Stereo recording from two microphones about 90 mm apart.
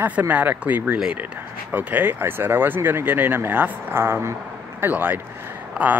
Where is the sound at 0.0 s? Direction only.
20° right (ahead or behind).